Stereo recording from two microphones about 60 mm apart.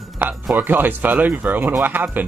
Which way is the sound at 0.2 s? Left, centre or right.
Right.